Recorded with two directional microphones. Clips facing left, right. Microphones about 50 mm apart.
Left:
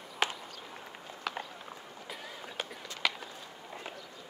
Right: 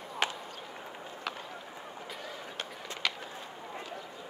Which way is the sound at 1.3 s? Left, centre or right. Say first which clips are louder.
Left 2 dB; centre.